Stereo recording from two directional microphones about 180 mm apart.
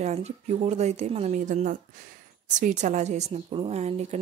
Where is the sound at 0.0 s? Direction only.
40° right (ahead or behind).